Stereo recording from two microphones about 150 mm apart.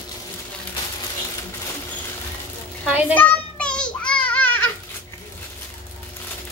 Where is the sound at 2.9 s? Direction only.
10° right (ahead or behind).